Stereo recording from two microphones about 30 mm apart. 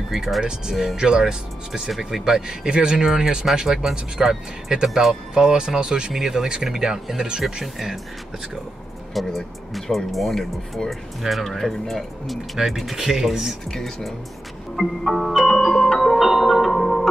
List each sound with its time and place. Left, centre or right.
0.1 s speech: centre
0.4 s speech: right
2.4 s speech: right
3.6 s speech: centre; by 6.1 s right
6.1 s speech: centre
7.6 s speech: centre
9.1 s speech: centre
11.4 s speech: centre
12.5 s speech: centre
13.7 s speech: centre
14.8 s music: centre
16.0 s marimba: centre
16.7 s marimba: centre